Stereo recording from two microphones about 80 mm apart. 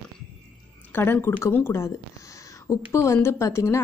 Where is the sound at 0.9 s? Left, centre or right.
Left.